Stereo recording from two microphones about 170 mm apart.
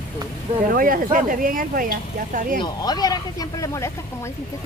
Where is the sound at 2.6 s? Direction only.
25° left (ahead or behind).